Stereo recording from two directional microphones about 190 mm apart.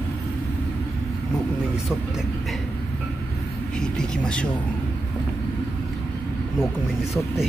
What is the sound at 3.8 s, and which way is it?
Vehicle, 5° left (ahead or behind).